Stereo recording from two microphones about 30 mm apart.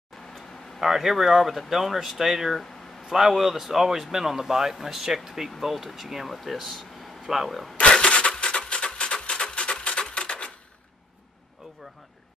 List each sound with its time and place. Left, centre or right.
0.7 s speech: centre
7.8 s a sound: left
8.5 s music: left